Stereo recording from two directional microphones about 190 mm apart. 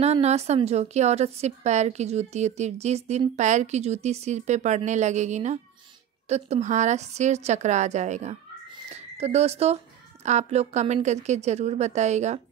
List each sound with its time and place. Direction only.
0.0 s a woman's voice: 35° right (ahead or behind)